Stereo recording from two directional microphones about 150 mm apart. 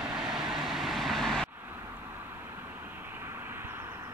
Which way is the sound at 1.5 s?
15° right (ahead or behind).